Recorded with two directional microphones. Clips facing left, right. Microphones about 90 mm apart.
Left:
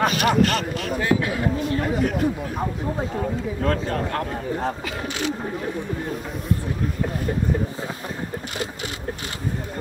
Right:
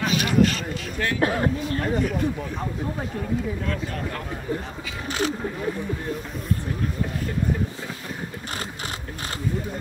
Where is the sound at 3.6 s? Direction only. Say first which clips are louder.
Left 6 dB; 50° left (ahead or behind).